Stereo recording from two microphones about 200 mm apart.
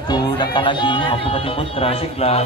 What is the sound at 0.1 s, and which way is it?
Music, 25° left (ahead or behind).